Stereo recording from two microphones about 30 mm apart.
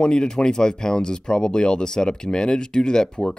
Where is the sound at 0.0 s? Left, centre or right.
Left.